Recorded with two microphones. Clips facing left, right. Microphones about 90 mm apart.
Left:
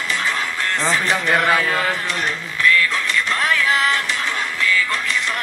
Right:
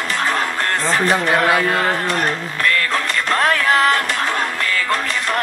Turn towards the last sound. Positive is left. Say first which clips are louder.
# right 3 dB
turn(degrees=-45)  # may be behind; listen again after turning